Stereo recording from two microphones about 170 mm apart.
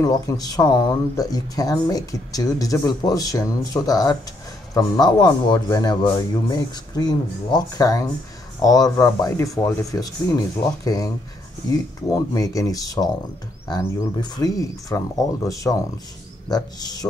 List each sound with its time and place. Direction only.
0.0 s speech: 20° left (ahead or behind)